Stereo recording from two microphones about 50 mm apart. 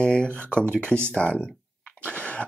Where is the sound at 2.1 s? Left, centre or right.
Left.